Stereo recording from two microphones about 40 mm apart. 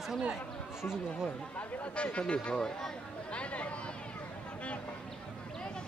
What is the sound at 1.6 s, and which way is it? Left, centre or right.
Speech, left.